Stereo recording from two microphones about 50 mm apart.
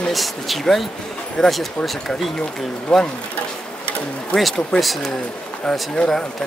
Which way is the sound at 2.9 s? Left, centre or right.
Centre.